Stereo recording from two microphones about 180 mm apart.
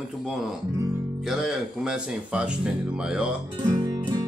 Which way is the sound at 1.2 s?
Centre (ahead or behind).